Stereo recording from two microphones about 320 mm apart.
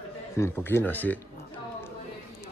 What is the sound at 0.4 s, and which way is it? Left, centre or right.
Speech, centre.